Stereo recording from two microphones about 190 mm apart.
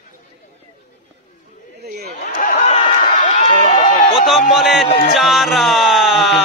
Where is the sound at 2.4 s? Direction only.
50° left (ahead or behind).